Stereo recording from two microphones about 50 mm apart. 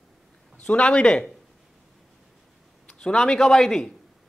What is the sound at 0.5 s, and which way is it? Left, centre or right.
Speech, left.